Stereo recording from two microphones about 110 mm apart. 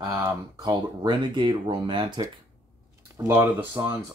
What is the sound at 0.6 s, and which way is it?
Speech, 40° right (ahead or behind).